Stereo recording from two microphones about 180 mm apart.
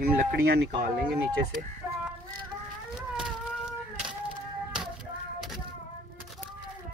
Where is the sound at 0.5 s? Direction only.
60° right (ahead or behind).